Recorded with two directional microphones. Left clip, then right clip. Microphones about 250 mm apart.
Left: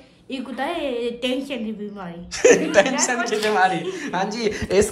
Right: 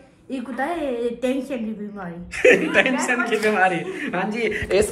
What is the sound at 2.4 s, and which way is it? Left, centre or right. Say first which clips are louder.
Speech: left 1 dB; centre.